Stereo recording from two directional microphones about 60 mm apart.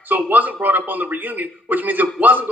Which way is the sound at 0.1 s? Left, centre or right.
Right.